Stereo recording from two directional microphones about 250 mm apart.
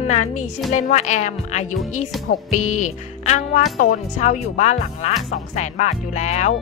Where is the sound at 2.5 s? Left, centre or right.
Left.